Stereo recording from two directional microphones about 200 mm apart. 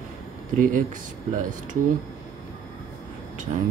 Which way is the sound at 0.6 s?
40° right (ahead or behind).